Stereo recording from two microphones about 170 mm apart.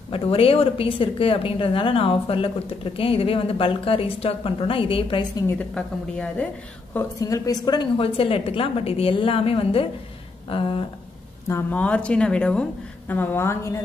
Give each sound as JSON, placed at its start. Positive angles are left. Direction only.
{"t": 0.1, "sound": "a woman's voice", "side_deg": 35}
{"t": 5.3, "sound": "a woman's voice", "side_deg": 15}
{"t": 6.9, "sound": "a woman's voice", "side_deg": 15}
{"t": 11.4, "sound": "speech", "side_deg": 10}